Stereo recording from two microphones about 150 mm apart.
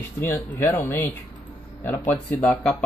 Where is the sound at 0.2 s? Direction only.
15° left (ahead or behind).